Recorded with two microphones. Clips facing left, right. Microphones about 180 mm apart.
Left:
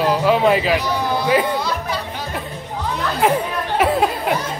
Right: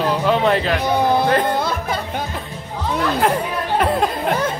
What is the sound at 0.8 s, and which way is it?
Speech, 55° right (ahead or behind).